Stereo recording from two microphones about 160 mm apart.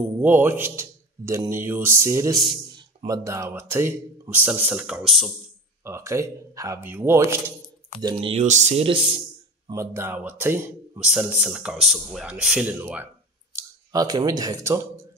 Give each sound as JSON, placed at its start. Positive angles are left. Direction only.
{"t": 0.2, "sound": "a man's voice", "side_deg": -10}
{"t": 5.9, "sound": "speech", "side_deg": -15}
{"t": 8.0, "sound": "speech", "side_deg": -30}
{"t": 9.7, "sound": "speech", "side_deg": -15}
{"t": 13.5, "sound": "speech", "side_deg": -20}